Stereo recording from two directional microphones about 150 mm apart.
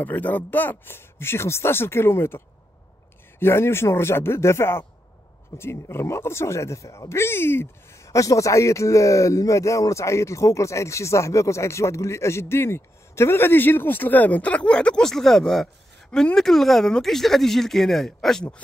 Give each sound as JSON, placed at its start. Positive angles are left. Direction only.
{"t": 0.0, "sound": "speech", "side_deg": 10}